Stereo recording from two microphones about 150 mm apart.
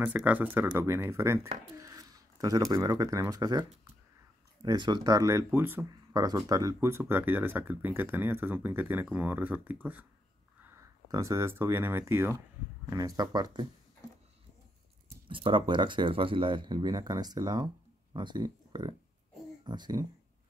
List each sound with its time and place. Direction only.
0.0 s speech: 10° right (ahead or behind); by 3.6 s 25° right (ahead or behind)
4.6 s speech: 30° right (ahead or behind)
15.2 s speech: 35° right (ahead or behind)